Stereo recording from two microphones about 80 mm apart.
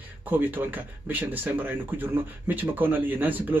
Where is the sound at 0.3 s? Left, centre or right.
Right.